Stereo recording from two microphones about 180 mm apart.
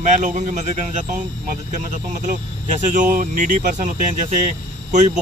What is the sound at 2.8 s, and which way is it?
Speech, 45° right (ahead or behind).